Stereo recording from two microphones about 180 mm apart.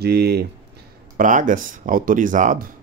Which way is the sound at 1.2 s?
45° right (ahead or behind).